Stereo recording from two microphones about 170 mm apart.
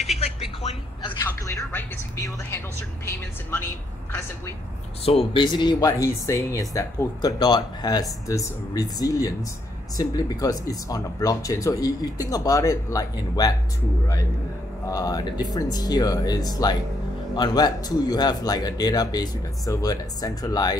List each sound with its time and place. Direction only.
1.7 s a woman's voice: 15° left (ahead or behind)
5.0 s speech: 30° left (ahead or behind)
14.9 s speech: 20° left (ahead or behind)